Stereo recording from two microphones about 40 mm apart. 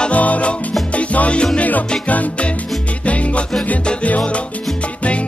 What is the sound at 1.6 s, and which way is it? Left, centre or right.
Music, left.